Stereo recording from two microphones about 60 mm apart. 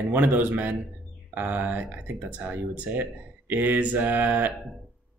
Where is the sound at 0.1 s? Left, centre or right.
Right.